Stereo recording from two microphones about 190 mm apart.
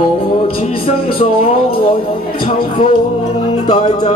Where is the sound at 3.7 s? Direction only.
35° left (ahead or behind).